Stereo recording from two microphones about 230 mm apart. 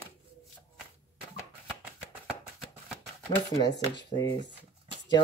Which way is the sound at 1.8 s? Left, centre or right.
Centre.